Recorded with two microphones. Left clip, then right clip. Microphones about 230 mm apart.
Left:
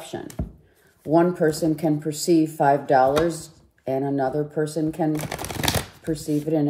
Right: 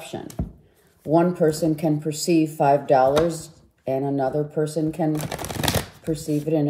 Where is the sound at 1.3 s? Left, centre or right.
Centre.